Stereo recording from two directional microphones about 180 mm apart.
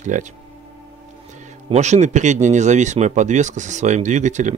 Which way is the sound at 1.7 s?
40° right (ahead or behind).